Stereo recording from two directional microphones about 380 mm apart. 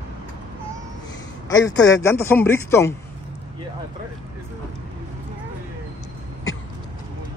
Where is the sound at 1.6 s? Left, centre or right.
Centre.